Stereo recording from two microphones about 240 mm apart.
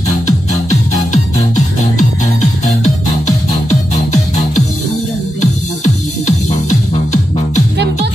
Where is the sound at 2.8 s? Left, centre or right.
Left.